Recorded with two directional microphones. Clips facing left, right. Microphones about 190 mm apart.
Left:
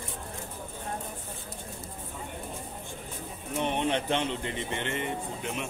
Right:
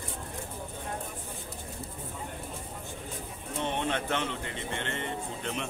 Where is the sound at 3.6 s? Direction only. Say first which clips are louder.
Left 3 dB; 15° left (ahead or behind).